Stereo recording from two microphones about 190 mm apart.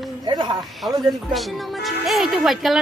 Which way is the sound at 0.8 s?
Centre (ahead or behind).